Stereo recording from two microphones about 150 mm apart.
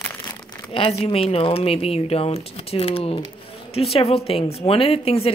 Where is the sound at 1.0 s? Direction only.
40° left (ahead or behind).